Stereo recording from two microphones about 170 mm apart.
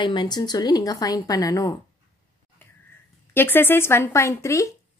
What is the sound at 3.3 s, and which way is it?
Speech, 10° left (ahead or behind).